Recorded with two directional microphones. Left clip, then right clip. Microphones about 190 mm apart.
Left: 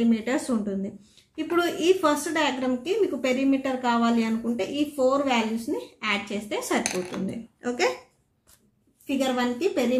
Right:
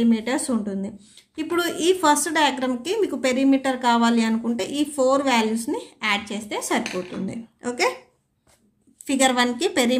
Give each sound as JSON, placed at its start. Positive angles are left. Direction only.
{"t": 0.0, "sound": "a woman's voice", "side_deg": -20}
{"t": 9.0, "sound": "a woman's voice", "side_deg": -50}